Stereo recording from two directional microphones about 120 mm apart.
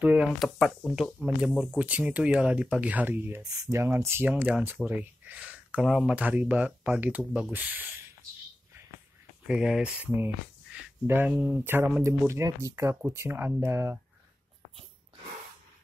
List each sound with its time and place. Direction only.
0.0 s speech: 10° right (ahead or behind)
0.4 s speech: 5° left (ahead or behind)
1.8 s speech: 10° right (ahead or behind)
6.1 s speech: 10° right (ahead or behind)
9.5 s speech: 5° right (ahead or behind); by 13.9 s 20° right (ahead or behind)